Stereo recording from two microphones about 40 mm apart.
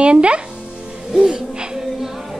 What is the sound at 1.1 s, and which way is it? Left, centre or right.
Music, centre.